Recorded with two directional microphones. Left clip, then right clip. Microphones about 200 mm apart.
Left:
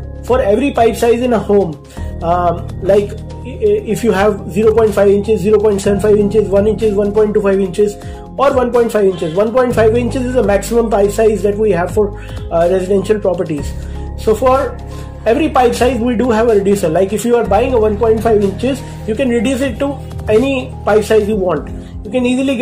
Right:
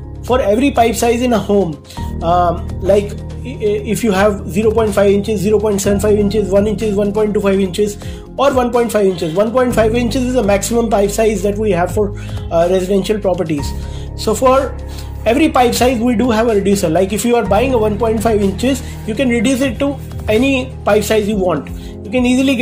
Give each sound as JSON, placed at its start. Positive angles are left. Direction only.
{"t": 0.3, "sound": "speech", "side_deg": -40}